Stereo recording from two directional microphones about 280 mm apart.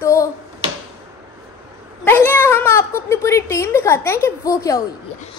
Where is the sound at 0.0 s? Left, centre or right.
Centre.